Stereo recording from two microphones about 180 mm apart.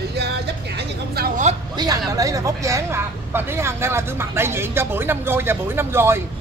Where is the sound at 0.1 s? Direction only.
65° right (ahead or behind).